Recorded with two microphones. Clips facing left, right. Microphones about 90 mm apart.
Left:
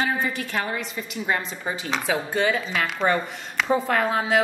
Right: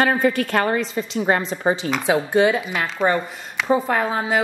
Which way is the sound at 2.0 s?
15° right (ahead or behind).